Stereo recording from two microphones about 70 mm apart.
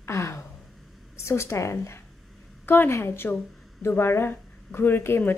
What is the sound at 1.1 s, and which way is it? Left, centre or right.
Speech, left.